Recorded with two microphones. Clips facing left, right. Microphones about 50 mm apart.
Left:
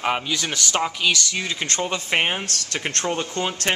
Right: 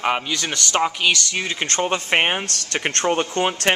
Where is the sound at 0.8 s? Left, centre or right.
Right.